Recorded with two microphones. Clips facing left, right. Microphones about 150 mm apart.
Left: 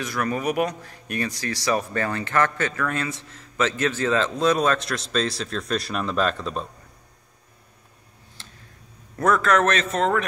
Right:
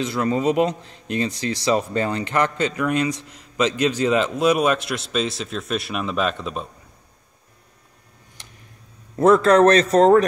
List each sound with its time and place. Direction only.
0.0 s speech: 20° right (ahead or behind)
8.4 s a sound: 15° right (ahead or behind)
9.2 s a man's voice: 30° right (ahead or behind)